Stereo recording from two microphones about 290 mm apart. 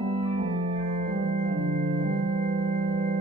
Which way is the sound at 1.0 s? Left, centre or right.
Right.